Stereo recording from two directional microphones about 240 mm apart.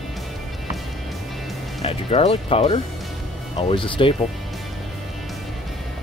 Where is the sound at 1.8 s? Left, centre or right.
Left.